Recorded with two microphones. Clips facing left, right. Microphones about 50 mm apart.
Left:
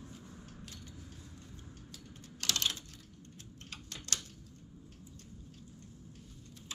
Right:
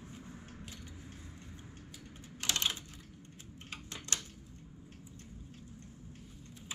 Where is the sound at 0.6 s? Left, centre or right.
Centre.